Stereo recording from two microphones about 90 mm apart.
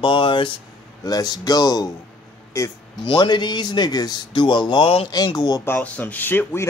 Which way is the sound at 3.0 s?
60° left (ahead or behind).